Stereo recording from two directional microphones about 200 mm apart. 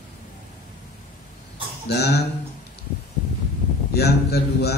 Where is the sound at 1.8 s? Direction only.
55° left (ahead or behind).